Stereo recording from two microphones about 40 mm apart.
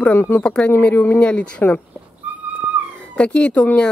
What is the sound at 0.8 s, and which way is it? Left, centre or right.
Speech, left.